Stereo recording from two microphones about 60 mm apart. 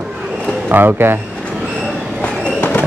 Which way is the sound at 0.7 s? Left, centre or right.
Right.